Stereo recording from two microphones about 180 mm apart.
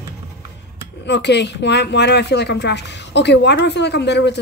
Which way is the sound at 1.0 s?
70° left (ahead or behind).